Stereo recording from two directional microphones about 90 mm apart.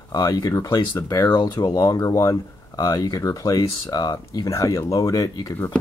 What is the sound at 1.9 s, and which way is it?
Speech, 40° left (ahead or behind).